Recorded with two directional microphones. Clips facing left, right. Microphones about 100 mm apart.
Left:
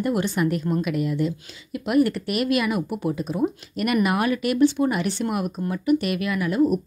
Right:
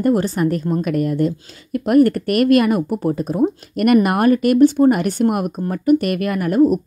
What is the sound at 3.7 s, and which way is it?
A woman's voice, 50° right (ahead or behind).